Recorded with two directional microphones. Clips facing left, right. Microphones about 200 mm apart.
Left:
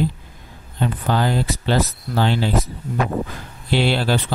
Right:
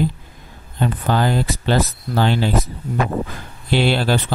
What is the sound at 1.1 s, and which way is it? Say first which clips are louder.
Speech: right 1 dB; 50° right (ahead or behind).